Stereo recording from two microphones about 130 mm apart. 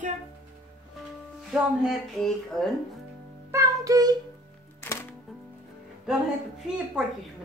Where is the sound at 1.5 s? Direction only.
5° right (ahead or behind).